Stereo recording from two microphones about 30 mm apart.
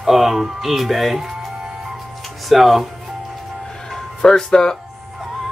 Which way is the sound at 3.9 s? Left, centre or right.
Centre.